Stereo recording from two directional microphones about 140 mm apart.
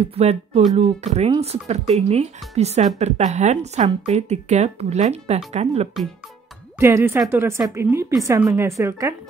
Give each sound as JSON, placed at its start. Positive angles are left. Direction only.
{"t": 0.0, "sound": "a woman's voice", "side_deg": -45}
{"t": 6.8, "sound": "a woman's voice", "side_deg": -20}